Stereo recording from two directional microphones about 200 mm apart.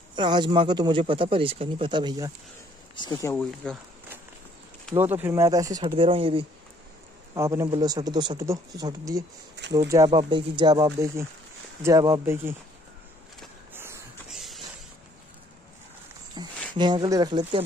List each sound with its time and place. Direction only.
0.1 s speech: 20° right (ahead or behind)
3.0 s speech: 20° left (ahead or behind)
4.9 s speech: 10° right (ahead or behind); by 6.4 s 25° right (ahead or behind)
7.3 s speech: 15° right (ahead or behind)
13.7 s a sound: 10° right (ahead or behind)
16.4 s a sound: 20° right (ahead or behind)
16.7 s speech: 20° right (ahead or behind)